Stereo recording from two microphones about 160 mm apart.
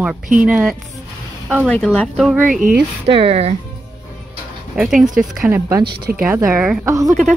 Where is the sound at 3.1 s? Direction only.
35° right (ahead or behind).